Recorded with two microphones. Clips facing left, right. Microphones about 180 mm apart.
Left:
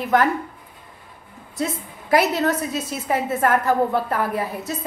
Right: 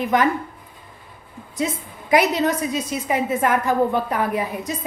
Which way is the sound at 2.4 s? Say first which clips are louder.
Right 1 dB; 10° right (ahead or behind).